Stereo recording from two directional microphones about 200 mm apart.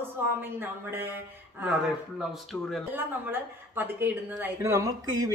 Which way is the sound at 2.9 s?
10° right (ahead or behind).